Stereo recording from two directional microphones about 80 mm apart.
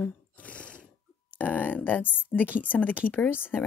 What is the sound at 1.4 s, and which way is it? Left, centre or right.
Speech, centre.